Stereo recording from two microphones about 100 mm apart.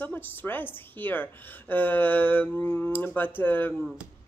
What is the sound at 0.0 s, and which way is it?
A woman's voice, 20° left (ahead or behind).